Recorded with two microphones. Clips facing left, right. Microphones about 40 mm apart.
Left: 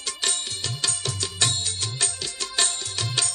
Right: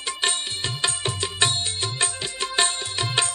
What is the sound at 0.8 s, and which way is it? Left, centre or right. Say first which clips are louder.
Music: right 4 dB; right.